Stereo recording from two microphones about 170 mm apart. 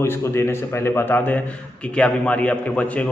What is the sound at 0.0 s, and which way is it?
A man's voice, 15° left (ahead or behind).